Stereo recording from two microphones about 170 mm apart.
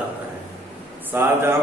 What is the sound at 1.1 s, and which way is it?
Speech, 15° right (ahead or behind).